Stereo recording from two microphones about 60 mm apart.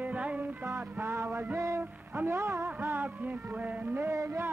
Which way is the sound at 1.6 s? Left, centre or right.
Right.